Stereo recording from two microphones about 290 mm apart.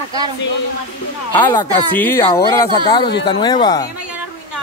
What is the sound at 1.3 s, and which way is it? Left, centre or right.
Speech, centre.